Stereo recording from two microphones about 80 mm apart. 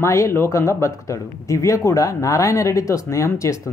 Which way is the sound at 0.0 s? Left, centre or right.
Left.